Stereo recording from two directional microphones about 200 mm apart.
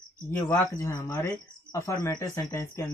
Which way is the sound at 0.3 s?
10° left (ahead or behind).